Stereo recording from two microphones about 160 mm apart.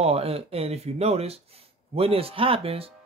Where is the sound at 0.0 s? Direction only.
40° right (ahead or behind).